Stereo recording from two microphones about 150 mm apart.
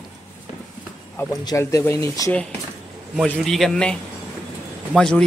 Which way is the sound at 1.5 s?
20° left (ahead or behind).